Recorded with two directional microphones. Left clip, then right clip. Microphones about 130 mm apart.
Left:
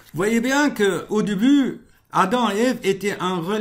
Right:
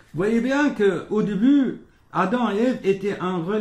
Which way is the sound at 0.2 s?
20° left (ahead or behind).